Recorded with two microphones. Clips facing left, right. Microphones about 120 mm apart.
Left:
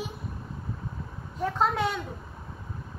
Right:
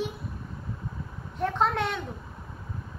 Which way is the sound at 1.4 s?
Centre (ahead or behind).